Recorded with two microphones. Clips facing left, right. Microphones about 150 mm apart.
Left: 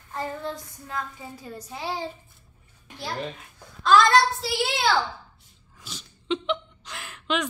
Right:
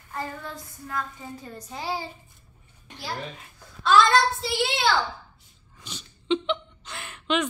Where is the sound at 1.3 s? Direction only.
10° left (ahead or behind).